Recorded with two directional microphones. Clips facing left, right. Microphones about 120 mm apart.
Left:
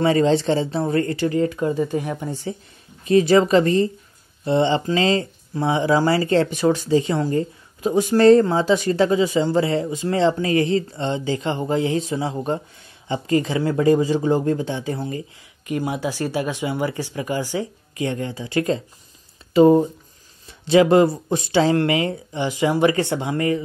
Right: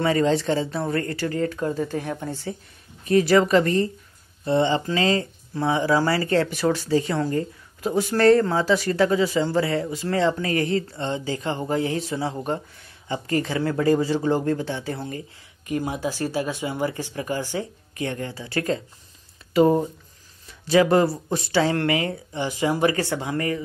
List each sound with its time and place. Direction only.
0.0 s speech: 25° left (ahead or behind)